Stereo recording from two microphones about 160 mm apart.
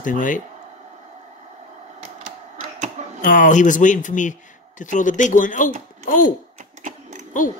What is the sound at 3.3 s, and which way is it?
Speech, 50° left (ahead or behind).